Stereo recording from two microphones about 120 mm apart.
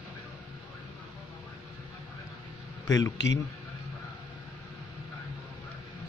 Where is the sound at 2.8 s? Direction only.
30° left (ahead or behind).